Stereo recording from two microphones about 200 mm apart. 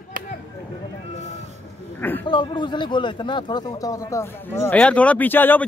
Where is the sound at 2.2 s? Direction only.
25° left (ahead or behind).